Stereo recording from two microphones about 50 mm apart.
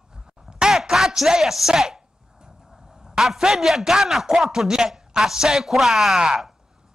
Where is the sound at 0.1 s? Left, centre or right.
Centre.